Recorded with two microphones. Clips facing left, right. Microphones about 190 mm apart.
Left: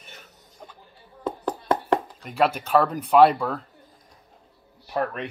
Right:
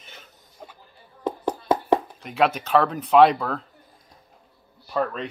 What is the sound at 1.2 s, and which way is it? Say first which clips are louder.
Chopping: right 2 dB; 15° right (ahead or behind).